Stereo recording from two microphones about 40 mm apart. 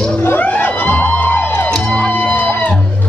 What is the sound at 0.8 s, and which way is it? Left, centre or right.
Music, left.